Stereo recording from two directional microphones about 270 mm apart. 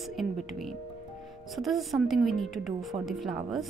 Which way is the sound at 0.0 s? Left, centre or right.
Centre.